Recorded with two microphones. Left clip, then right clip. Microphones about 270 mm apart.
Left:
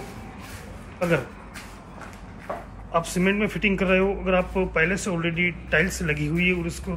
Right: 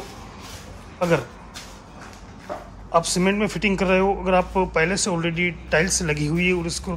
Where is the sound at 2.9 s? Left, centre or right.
Centre.